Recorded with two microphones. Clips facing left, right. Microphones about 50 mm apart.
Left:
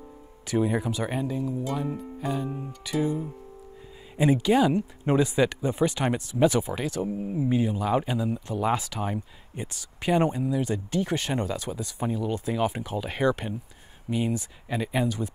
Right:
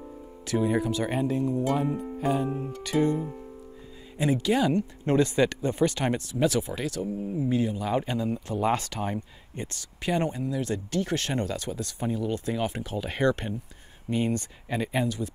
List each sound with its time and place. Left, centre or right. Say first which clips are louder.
0.7 s speech: right 2 dB; centre
2.2 s music: right 3 dB; centre
2.8 s speech: right 2 dB; centre
4.2 s speech: left 3 dB; centre
15.0 s speech: left 1 dB; left